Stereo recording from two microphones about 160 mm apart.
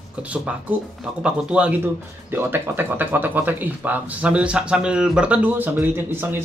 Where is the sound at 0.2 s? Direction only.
10° right (ahead or behind).